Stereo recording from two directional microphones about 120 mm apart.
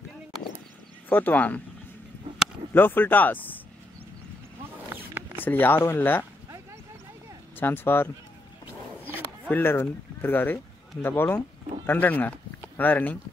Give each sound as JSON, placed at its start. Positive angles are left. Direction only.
{"t": 1.0, "sound": "speech", "side_deg": 15}
{"t": 2.7, "sound": "speech", "side_deg": 15}
{"t": 4.9, "sound": "zipper", "side_deg": -15}
{"t": 5.4, "sound": "speech", "side_deg": 15}
{"t": 7.5, "sound": "speech", "side_deg": 15}
{"t": 9.5, "sound": "speech", "side_deg": 20}